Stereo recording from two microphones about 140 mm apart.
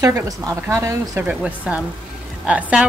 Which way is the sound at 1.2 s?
10° right (ahead or behind).